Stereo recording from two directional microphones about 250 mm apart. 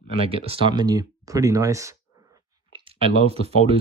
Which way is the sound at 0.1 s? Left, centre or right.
Right.